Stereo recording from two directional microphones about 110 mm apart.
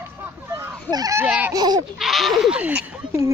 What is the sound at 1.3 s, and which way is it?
Speech, 15° right (ahead or behind).